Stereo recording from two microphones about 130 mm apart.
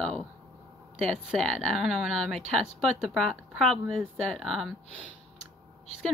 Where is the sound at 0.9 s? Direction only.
Centre (ahead or behind).